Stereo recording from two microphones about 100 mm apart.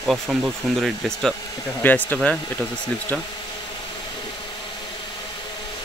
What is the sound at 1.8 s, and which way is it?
Speech, 20° left (ahead or behind).